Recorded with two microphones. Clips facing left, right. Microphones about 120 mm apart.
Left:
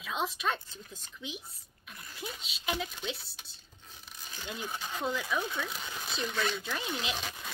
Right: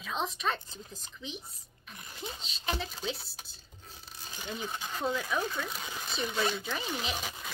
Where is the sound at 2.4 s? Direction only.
5° left (ahead or behind).